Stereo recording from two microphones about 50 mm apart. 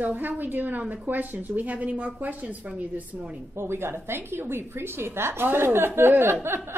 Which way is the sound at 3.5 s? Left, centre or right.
Right.